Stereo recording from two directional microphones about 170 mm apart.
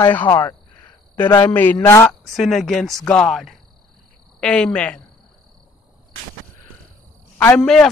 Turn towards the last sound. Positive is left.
turn(degrees=5)  # may be behind; listen again after turning